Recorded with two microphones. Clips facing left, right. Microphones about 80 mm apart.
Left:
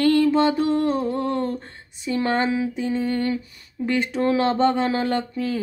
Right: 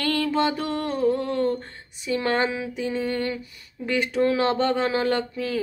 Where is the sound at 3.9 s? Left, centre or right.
Left.